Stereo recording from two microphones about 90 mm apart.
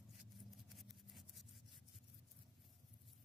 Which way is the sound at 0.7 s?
Centre (ahead or behind).